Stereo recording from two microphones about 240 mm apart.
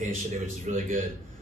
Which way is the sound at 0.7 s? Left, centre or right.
Right.